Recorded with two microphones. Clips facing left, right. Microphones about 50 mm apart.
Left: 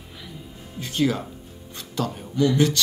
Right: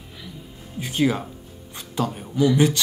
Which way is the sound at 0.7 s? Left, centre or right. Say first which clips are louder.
Right 1 dB; centre.